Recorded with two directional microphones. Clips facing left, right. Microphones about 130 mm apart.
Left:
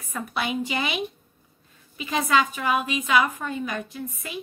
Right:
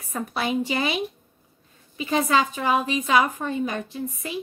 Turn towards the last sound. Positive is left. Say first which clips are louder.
# right 4 dB
turn(degrees=-30)  # may be behind; listen again after turning